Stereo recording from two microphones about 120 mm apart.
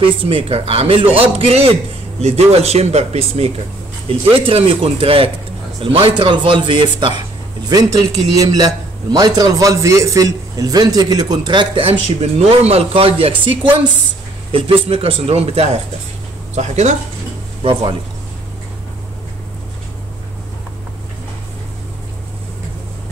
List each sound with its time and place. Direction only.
0.0 s a man's voice: 45° right (ahead or behind)
16.5 s speech: 70° right (ahead or behind)